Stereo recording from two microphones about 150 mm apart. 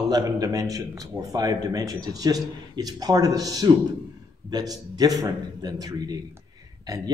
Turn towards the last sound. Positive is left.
turn(degrees=-25)  # may be behind; listen again after turning